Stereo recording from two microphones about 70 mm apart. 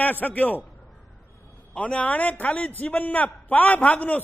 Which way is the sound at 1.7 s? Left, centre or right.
Centre.